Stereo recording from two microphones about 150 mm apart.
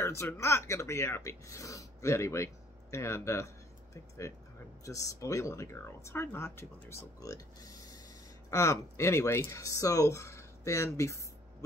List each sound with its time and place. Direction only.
0.0 s speech: 15° left (ahead or behind)